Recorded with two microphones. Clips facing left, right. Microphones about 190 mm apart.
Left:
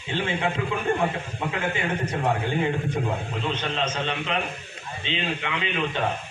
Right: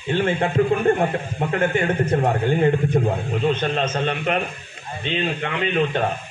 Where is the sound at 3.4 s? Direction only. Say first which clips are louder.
Right 8 dB; 50° right (ahead or behind).